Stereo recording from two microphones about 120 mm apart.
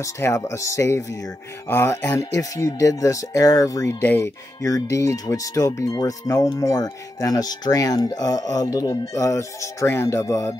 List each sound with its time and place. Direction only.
0.0 s speech: 25° left (ahead or behind)
4.0 s speech: 20° left (ahead or behind)